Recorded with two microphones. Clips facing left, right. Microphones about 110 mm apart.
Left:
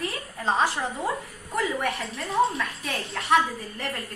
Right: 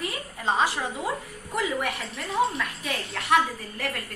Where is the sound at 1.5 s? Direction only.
Centre (ahead or behind).